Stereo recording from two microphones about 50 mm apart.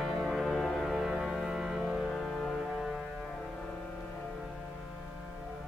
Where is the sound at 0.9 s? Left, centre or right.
Centre.